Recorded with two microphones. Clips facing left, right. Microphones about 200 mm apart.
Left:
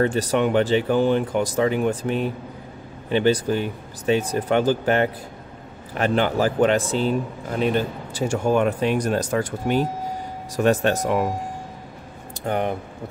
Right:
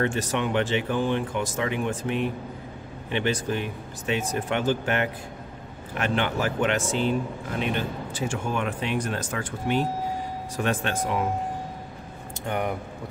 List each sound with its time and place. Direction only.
0.0 s speech: 35° left (ahead or behind)
12.4 s speech: 30° left (ahead or behind)